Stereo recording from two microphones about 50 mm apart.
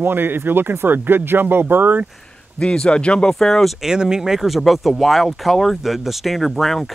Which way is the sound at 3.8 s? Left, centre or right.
Centre.